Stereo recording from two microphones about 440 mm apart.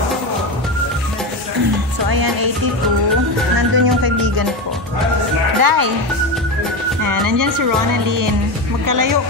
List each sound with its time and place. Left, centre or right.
2.0 s music: right
3.7 s music: right
5.6 s speech: right
7.0 s speech: right